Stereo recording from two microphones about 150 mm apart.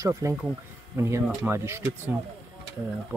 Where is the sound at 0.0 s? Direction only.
20° right (ahead or behind).